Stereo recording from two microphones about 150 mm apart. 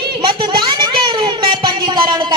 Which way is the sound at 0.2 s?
35° right (ahead or behind).